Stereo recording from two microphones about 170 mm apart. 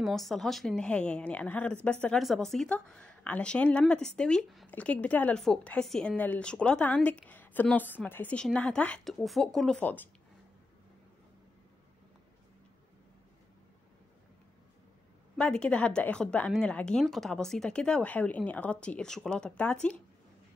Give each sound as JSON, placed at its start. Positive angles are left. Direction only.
{"t": 0.0, "sound": "a woman's voice", "side_deg": 0}
{"t": 15.3, "sound": "a woman's voice", "side_deg": 5}